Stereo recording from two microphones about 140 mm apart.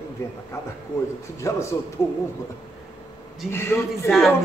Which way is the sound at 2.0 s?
20° left (ahead or behind).